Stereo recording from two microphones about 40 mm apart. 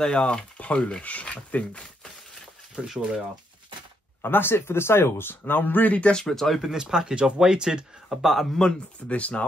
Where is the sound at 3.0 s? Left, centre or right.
Right.